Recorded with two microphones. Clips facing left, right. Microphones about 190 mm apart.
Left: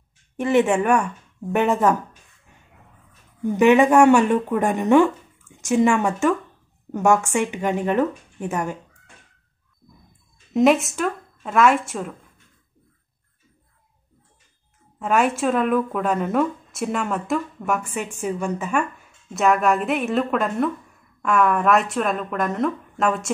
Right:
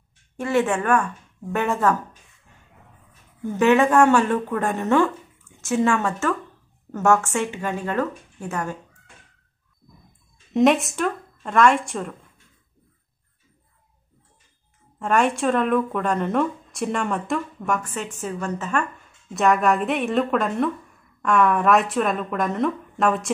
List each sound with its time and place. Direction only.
0.4 s speech: 20° left (ahead or behind)
3.4 s speech: 15° left (ahead or behind)
10.5 s speech: centre (ahead or behind)
15.0 s speech: 5° left (ahead or behind)